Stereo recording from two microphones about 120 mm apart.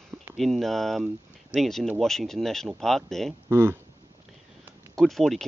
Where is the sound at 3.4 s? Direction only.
20° right (ahead or behind).